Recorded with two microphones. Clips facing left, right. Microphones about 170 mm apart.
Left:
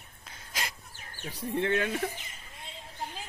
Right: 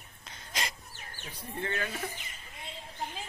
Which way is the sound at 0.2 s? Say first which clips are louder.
Right 1 dB; 5° left (ahead or behind).